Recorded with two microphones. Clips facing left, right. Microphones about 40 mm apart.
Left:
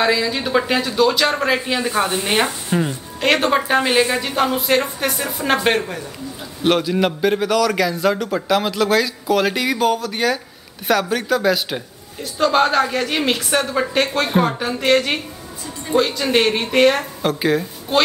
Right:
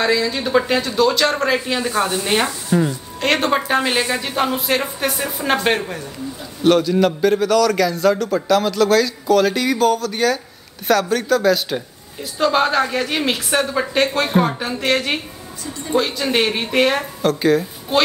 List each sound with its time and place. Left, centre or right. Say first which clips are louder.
0.0 s a woman's voice: even; centre
2.3 s speech: right 2 dB; left
3.2 s a woman's voice: left 1 dB; centre
6.6 s a man's voice: right 3 dB; centre
12.2 s a woman's voice: left 1 dB; centre
17.2 s a woman's voice: right 6 dB; centre